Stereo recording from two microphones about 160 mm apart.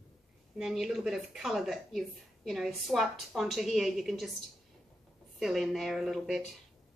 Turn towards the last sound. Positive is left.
turn(degrees=0)  # may be behind; listen again after turning